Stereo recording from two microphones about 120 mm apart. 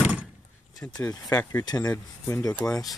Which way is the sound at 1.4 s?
15° left (ahead or behind).